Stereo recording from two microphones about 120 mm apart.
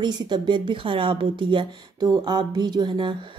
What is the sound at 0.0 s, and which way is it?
Speech, 40° right (ahead or behind).